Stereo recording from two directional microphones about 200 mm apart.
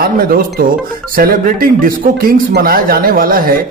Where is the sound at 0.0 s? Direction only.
45° right (ahead or behind).